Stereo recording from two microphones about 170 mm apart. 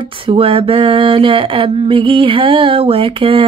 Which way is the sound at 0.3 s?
30° right (ahead or behind).